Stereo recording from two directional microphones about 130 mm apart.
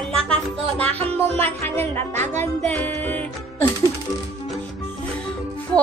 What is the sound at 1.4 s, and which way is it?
Speech, 15° left (ahead or behind).